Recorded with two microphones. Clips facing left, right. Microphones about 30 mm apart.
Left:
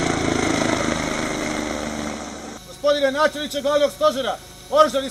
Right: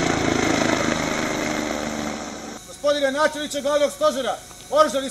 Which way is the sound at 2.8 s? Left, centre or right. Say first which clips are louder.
Left 2 dB; centre.